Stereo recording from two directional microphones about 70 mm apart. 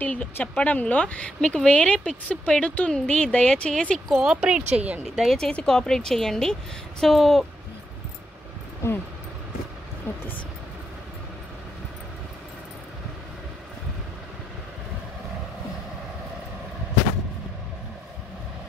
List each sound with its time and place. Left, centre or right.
0.0 s speech: left
4.1 s speech: centre
5.0 s speech: centre
5.4 s speech: centre
10.1 s speech: left